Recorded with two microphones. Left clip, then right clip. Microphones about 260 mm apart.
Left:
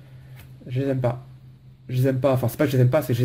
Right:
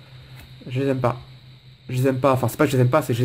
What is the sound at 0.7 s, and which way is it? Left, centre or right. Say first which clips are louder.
Speech: right 3 dB; centre.